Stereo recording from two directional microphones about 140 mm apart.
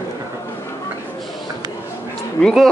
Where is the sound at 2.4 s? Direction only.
Centre (ahead or behind).